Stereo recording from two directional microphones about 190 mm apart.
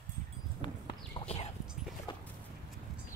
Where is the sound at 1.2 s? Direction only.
30° left (ahead or behind).